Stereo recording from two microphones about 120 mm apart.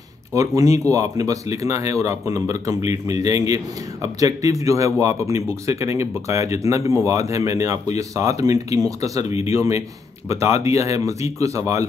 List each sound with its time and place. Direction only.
0.3 s a man's voice: 25° right (ahead or behind)